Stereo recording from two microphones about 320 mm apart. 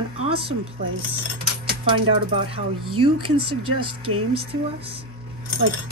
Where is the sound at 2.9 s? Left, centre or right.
Right.